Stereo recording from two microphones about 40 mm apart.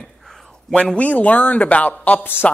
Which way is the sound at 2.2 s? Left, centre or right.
Left.